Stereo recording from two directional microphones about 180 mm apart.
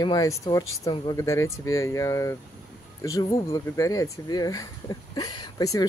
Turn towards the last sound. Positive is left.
turn(degrees=20)  # may be behind; listen again after turning